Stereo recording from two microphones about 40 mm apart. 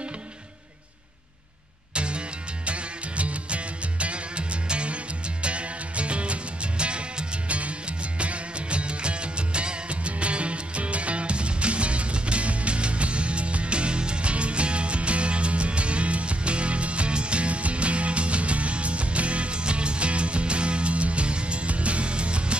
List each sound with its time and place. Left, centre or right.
2.0 s music: right